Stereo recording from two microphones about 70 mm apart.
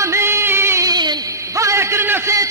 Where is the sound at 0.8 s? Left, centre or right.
Right.